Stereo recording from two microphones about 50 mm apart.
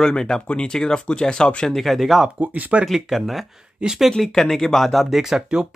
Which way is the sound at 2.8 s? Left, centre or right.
Centre.